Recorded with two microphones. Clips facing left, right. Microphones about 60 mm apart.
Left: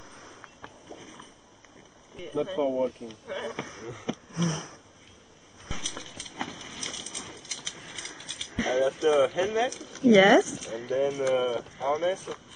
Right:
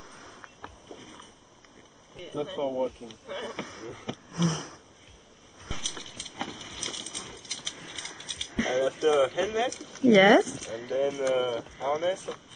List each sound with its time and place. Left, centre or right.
0.2 s a sound: centre
2.4 s speech: left
5.7 s horse: centre
9.1 s speech: centre